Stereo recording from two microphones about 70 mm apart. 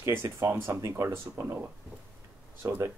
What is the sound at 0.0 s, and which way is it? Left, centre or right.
Speech, right.